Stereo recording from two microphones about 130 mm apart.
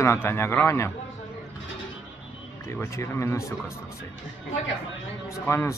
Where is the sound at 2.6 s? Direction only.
20° left (ahead or behind).